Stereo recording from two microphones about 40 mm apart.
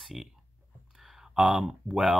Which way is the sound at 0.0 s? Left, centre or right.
Centre.